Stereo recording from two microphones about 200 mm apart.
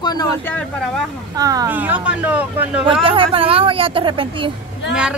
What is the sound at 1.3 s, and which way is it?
Speech, 20° right (ahead or behind).